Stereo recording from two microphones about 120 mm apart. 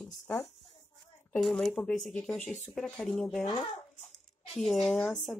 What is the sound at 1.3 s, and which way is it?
Speech, centre (ahead or behind).